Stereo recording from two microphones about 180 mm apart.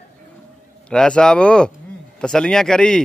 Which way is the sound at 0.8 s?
5° left (ahead or behind).